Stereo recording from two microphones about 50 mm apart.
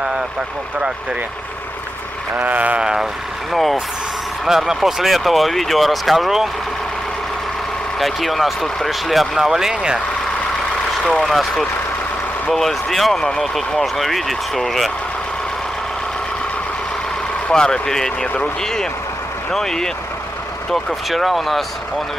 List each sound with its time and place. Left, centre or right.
2.4 s a sound: right
2.8 s speech: centre
4.5 s speech: centre
8.0 s speech: centre
11.0 s speech: centre
17.5 s speech: centre